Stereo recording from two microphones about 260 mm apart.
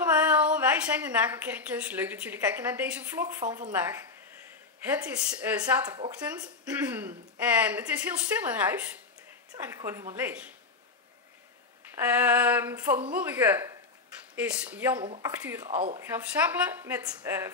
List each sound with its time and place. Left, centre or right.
0.1 s a woman's voice: centre
11.9 s a woman's voice: centre
15.0 s a woman's voice: centre
15.7 s speech: right
16.0 s a woman's voice: centre